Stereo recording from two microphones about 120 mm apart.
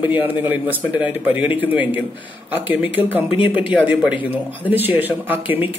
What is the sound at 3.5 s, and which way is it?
A man's voice, 10° right (ahead or behind).